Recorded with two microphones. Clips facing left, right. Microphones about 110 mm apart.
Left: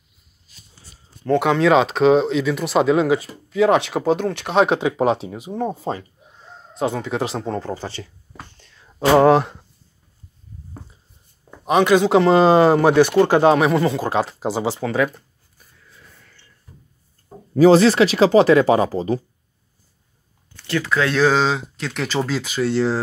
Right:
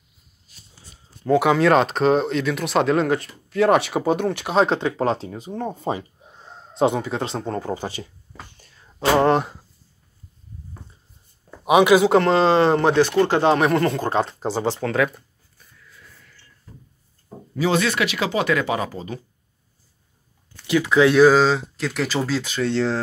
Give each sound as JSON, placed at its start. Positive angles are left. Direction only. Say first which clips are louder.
{"t": 1.2, "sound": "speech", "louder": "even", "side_deg": -5}
{"t": 4.6, "sound": "speech", "louder": "left 3 dB", "side_deg": 15}
{"t": 6.7, "sound": "a sound", "louder": "right 3 dB", "side_deg": -25}
{"t": 7.0, "sound": "speech", "louder": "left 2 dB", "side_deg": 0}
{"t": 7.7, "sound": "speech", "louder": "right 1 dB", "side_deg": -15}
{"t": 8.5, "sound": "whispering", "louder": "left 1 dB", "side_deg": -5}
{"t": 9.2, "sound": "speech", "louder": "left 4 dB", "side_deg": 0}
{"t": 11.6, "sound": "speech", "louder": "right 1 dB", "side_deg": -5}
{"t": 12.4, "sound": "speech", "louder": "left 3 dB", "side_deg": 15}
{"t": 17.6, "sound": "speech", "louder": "left 9 dB", "side_deg": 35}
{"t": 20.6, "sound": "speech", "louder": "right 4 dB", "side_deg": -15}